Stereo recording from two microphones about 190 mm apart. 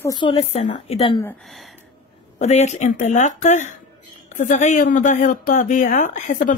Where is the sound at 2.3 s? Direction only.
35° left (ahead or behind).